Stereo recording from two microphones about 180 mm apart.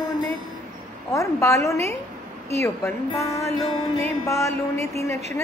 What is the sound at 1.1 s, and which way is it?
Music, 15° left (ahead or behind).